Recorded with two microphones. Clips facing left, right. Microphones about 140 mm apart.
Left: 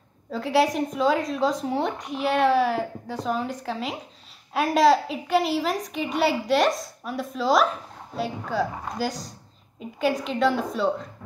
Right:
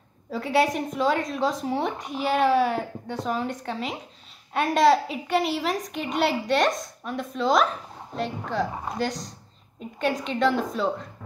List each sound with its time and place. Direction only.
0.3 s a woman's voice: centre (ahead or behind)